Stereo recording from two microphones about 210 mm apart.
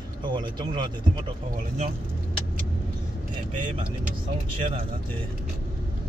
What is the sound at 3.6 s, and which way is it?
Speech, 35° right (ahead or behind).